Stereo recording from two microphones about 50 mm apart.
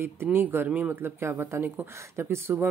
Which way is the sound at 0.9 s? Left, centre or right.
Right.